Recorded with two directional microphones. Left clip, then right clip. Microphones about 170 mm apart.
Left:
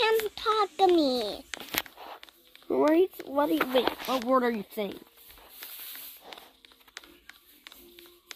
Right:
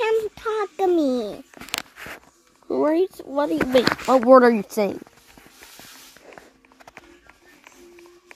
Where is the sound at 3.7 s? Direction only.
85° right.